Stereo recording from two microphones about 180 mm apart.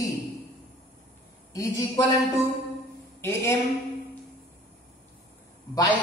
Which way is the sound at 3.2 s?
15° left (ahead or behind).